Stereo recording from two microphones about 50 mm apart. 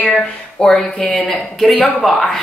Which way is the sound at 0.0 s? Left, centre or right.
Left.